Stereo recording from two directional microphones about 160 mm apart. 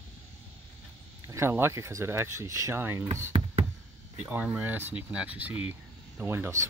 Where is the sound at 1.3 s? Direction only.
15° right (ahead or behind).